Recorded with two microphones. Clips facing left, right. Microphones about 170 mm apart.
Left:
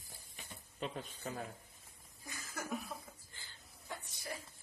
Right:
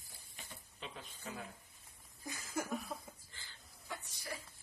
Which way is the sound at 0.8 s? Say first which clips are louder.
Left 8 dB; 40° left (ahead or behind).